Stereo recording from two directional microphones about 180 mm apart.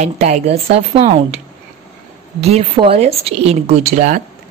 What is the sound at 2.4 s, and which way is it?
Speech, 35° right (ahead or behind).